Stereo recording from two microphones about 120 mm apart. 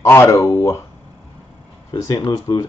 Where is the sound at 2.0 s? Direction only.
30° left (ahead or behind).